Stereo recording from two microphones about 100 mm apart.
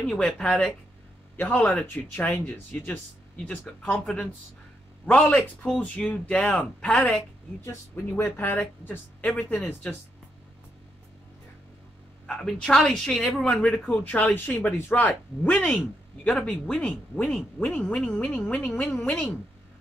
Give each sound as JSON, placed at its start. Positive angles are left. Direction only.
{"t": 0.4, "sound": "a woman's voice", "side_deg": 15}
{"t": 3.3, "sound": "a woman's voice", "side_deg": 10}
{"t": 7.6, "sound": "speech", "side_deg": 20}
{"t": 12.3, "sound": "a woman's voice", "side_deg": 5}